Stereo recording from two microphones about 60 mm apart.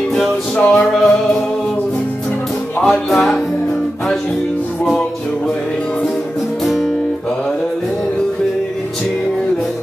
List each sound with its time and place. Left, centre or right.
0.6 s music: centre
0.8 s music: centre
2.8 s music: centre
6.6 s music: centre